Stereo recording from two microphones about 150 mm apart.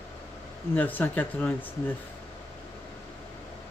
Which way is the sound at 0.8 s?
10° left (ahead or behind).